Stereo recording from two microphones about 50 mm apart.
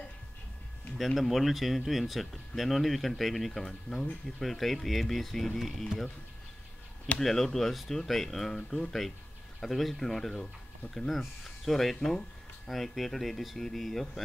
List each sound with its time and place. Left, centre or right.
0.9 s speech: centre
7.2 s speech: centre